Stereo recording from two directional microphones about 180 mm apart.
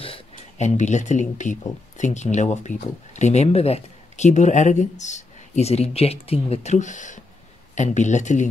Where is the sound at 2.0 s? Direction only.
40° left (ahead or behind).